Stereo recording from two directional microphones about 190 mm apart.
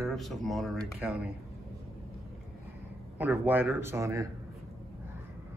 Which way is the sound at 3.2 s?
10° right (ahead or behind).